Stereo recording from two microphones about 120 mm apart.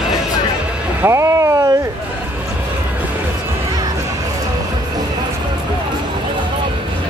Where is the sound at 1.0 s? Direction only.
25° right (ahead or behind).